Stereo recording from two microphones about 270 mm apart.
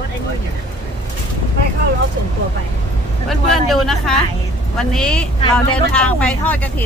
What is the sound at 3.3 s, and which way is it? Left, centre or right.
Speech, centre.